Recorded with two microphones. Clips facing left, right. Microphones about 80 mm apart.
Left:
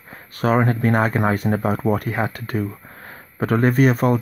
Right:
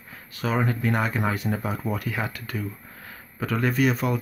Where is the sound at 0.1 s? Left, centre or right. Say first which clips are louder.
Left 8 dB; left.